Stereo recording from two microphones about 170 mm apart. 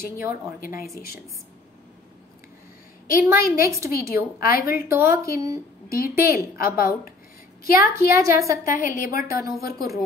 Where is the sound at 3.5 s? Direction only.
15° right (ahead or behind).